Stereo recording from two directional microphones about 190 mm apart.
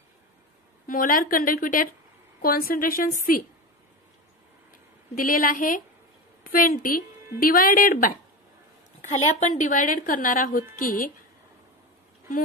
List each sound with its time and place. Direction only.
0.8 s a woman's voice: 50° left (ahead or behind)
5.1 s a woman's voice: 45° left (ahead or behind)